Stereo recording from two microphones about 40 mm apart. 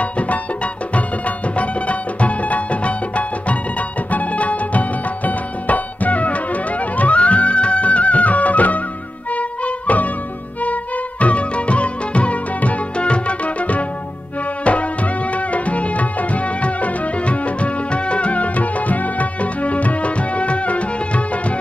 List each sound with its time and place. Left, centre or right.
0.0 s music: left